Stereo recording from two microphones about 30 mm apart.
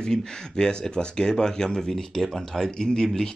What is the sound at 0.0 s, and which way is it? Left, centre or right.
Speech, left.